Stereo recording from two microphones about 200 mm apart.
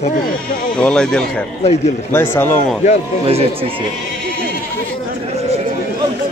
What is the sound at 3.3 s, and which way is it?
Speech, 30° right (ahead or behind).